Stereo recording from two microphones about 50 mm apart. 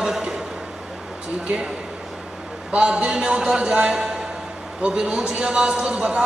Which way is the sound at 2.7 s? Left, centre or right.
Right.